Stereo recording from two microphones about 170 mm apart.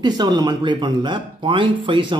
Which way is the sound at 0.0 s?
25° right (ahead or behind).